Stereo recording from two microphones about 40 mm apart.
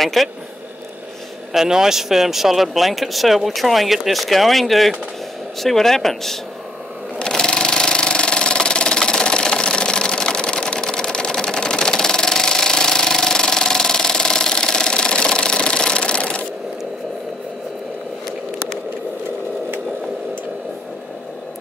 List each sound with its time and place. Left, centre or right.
0.0 s speech: centre
1.5 s speech: centre
7.2 s engine: centre